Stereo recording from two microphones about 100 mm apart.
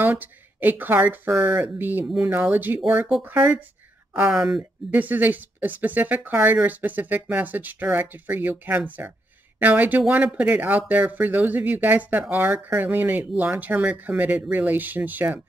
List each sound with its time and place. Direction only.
0.0 s speech: 20° right (ahead or behind)
4.2 s speech: 10° right (ahead or behind)